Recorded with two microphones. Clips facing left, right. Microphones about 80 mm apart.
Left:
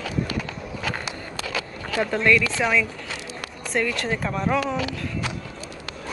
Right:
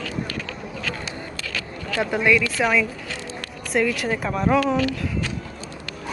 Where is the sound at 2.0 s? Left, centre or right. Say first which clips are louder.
Even; centre.